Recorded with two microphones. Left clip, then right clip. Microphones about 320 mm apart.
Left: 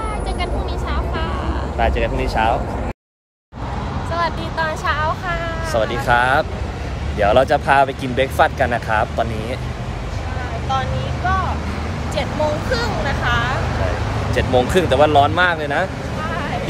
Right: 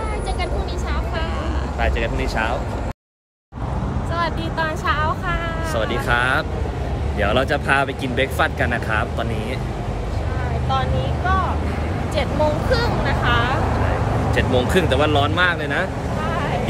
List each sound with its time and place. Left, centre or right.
1.8 s speech: centre
4.1 s vehicle: centre
5.8 s speech: centre
10.7 s speech: centre
12.7 s speech: centre
14.3 s speech: centre